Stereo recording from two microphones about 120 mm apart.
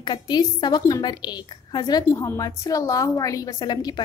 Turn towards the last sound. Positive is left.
turn(degrees=35)  # may be behind; listen again after turning